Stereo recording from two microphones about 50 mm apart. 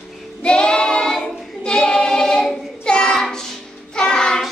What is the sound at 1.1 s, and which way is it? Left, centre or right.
Singing, centre.